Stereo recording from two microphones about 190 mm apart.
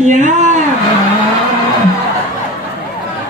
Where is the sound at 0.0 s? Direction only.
40° right (ahead or behind).